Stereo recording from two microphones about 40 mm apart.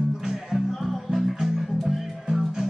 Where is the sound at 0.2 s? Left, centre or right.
Centre.